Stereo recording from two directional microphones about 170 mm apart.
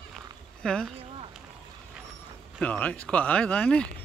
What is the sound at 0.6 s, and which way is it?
Speech, 5° left (ahead or behind).